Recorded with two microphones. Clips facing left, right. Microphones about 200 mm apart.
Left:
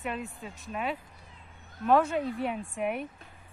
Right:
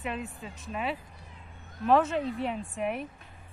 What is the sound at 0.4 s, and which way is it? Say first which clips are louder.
Speech: even; centre (ahead or behind).